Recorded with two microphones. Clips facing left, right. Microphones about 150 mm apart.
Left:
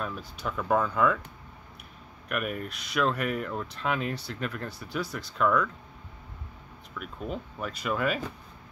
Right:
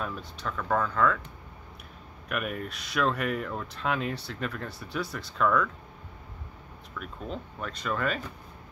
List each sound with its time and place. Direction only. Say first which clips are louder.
0.0 s speech: left 1 dB; centre (ahead or behind)
2.2 s speech: left 1 dB; centre (ahead or behind)
7.0 s speech: left 2 dB; 5° left (ahead or behind)